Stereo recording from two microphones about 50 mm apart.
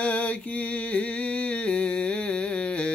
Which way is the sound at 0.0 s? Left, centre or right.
Left.